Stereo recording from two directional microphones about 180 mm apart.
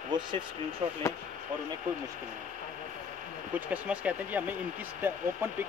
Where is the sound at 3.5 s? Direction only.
5° right (ahead or behind).